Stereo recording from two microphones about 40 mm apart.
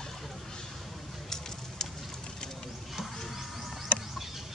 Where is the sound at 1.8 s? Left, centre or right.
Centre.